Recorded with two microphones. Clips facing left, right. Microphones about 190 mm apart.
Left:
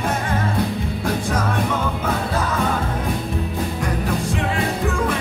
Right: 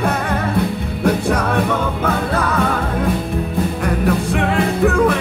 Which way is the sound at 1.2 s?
60° right (ahead or behind).